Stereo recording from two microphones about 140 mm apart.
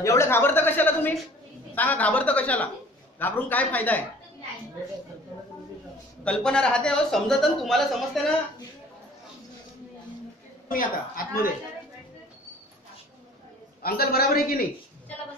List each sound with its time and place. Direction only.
0.0 s a woman's voice: 20° left (ahead or behind)
6.2 s speech: 5° left (ahead or behind)
10.7 s a woman's voice: 90° left
13.8 s a woman's voice: 90° left